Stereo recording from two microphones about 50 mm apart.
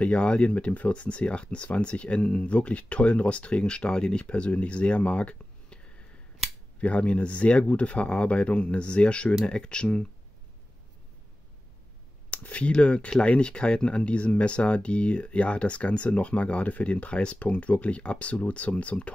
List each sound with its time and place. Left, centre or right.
0.0 s speech: left
6.8 s speech: left
12.3 s speech: left